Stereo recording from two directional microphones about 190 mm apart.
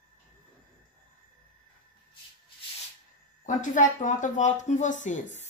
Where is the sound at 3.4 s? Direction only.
40° left (ahead or behind).